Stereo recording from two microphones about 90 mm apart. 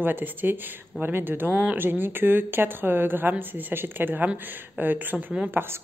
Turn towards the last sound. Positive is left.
turn(degrees=-25)  # may be behind; listen again after turning